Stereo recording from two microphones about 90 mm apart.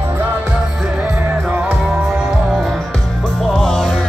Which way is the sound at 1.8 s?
5° right (ahead or behind).